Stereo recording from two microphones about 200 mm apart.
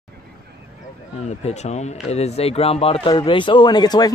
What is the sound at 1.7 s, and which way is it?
Speech, 30° left (ahead or behind).